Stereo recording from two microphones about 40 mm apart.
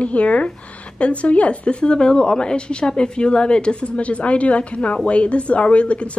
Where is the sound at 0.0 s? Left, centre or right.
Left.